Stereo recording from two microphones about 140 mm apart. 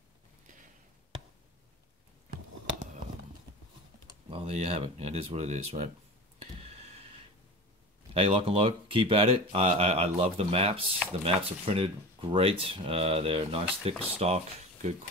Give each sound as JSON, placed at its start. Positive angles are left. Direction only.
{"t": 4.3, "sound": "speech", "side_deg": -50}
{"t": 6.4, "sound": "a sound", "side_deg": -45}
{"t": 8.1, "sound": "speech", "side_deg": -45}